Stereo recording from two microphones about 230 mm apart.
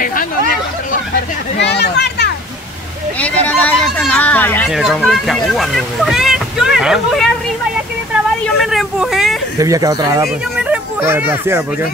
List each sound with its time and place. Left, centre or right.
0.0 s chatter: left
1.6 s speech: left
3.2 s speech: centre
8.6 s speech: centre
9.6 s speech: centre